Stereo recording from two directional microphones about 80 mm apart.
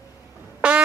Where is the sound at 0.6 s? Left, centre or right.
Centre.